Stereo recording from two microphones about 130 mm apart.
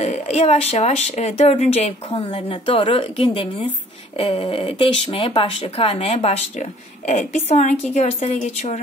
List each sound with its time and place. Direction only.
0.0 s speech: 60° left (ahead or behind)